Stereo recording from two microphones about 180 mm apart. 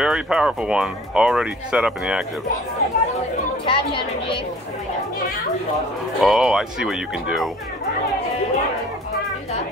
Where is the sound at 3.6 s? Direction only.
30° left (ahead or behind).